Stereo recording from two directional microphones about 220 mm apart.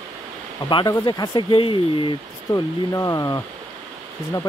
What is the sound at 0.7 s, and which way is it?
Speech, 20° left (ahead or behind).